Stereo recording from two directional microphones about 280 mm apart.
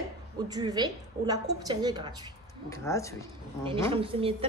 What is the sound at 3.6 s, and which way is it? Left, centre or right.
Speech, centre.